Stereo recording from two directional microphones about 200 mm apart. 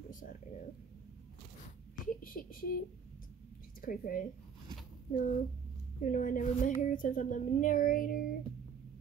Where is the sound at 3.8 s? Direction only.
45° left (ahead or behind).